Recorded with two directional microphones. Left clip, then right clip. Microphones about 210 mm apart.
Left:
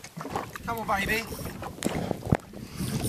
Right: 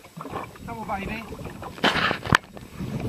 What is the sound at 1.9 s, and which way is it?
Walk, 30° right (ahead or behind).